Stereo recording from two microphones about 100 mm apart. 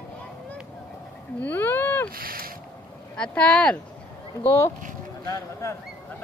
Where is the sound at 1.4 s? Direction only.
20° left (ahead or behind).